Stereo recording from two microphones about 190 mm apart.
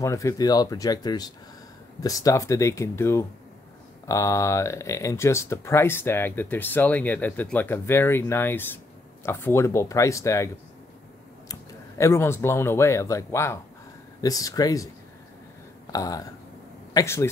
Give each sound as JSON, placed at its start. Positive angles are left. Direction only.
{"t": 0.0, "sound": "speech", "side_deg": 15}
{"t": 12.0, "sound": "speech", "side_deg": 15}
{"t": 15.9, "sound": "speech", "side_deg": 20}